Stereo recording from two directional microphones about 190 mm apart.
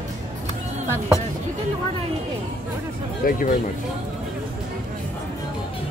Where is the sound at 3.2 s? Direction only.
45° left (ahead or behind).